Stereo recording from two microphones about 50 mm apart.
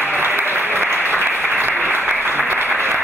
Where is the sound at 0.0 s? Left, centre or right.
Right.